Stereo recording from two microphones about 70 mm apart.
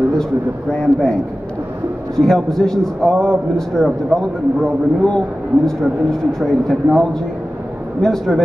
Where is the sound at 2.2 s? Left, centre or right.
Centre.